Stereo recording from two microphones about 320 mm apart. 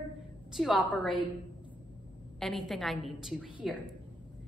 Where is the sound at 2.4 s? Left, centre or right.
Centre.